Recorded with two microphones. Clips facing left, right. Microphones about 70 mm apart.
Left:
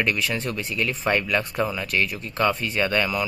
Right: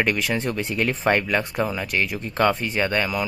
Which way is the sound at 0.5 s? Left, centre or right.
Right.